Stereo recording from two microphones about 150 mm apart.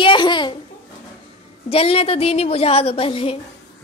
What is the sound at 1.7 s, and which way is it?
A woman's voice, 40° left (ahead or behind).